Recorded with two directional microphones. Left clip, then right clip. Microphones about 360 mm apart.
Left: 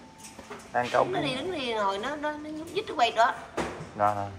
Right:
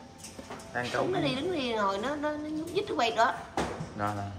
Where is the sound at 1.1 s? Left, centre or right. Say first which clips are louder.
Even; centre.